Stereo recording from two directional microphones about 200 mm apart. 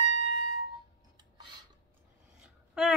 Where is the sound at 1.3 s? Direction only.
20° right (ahead or behind).